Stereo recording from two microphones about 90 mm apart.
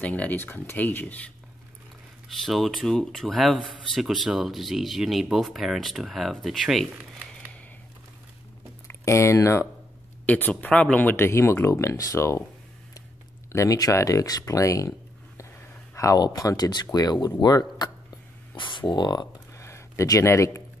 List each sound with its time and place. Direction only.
0.0 s speech: 15° left (ahead or behind)
2.2 s speech: centre (ahead or behind)
8.8 s speech: 30° left (ahead or behind)
10.2 s speech: 15° left (ahead or behind); by 12.4 s 35° left (ahead or behind)
13.5 s speech: 35° left (ahead or behind)
18.6 s speech: 65° left (ahead or behind)
19.5 s a sound: 30° left (ahead or behind)